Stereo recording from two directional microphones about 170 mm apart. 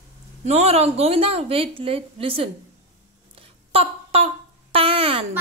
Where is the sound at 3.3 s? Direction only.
35° right (ahead or behind).